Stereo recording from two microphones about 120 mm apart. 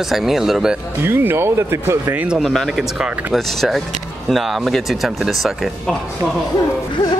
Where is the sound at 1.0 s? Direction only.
20° right (ahead or behind).